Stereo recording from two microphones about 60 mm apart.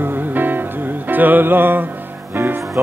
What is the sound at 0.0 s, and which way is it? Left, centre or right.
Music, right.